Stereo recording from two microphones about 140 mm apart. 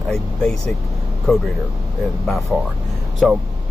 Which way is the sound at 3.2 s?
Centre (ahead or behind).